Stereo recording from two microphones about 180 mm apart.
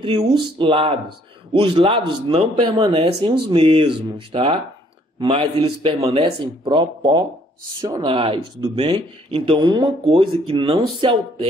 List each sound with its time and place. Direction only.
0.6 s speech: 30° right (ahead or behind)